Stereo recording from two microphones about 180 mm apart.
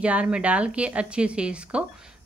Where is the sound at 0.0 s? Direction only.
5° right (ahead or behind).